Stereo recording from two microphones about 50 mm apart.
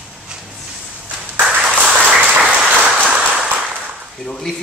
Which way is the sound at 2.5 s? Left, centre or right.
Centre.